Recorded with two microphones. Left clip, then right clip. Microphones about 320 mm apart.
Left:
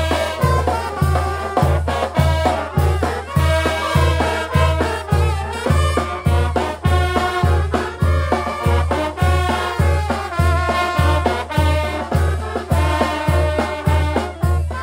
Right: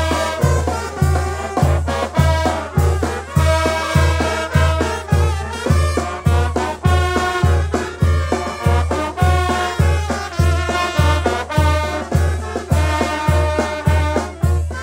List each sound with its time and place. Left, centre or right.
0.7 s music: left
1.9 s music: centre
6.8 s music: centre
8.7 s music: centre
11.3 s music: centre